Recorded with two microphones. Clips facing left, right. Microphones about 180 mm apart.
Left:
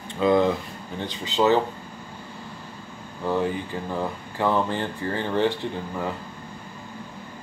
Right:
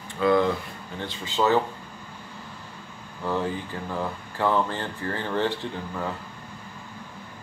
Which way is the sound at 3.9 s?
15° left (ahead or behind).